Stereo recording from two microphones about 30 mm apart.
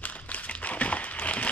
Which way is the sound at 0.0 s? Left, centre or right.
Left.